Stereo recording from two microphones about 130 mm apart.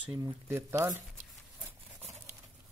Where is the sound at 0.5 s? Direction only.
20° right (ahead or behind).